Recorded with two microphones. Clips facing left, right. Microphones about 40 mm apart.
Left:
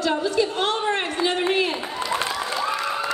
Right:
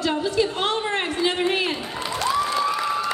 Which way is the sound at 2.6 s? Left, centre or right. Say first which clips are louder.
Right 2 dB; centre.